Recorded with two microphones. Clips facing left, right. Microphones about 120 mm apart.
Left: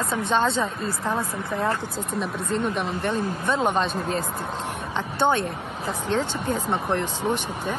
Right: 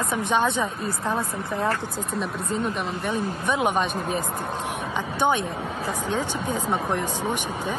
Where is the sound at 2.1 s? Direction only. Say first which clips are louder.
Left 1 dB; centre (ahead or behind).